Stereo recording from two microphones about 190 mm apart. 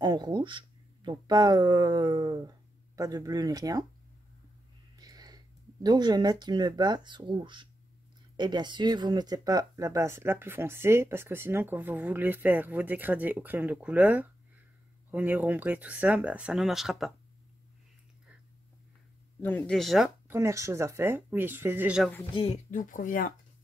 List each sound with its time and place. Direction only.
0.0 s speech: 20° right (ahead or behind)
4.9 s speech: 20° right (ahead or behind); by 17.1 s centre (ahead or behind)
19.4 s speech: 5° left (ahead or behind)
20.2 s speech: 15° right (ahead or behind)
22.7 s speech: 45° left (ahead or behind)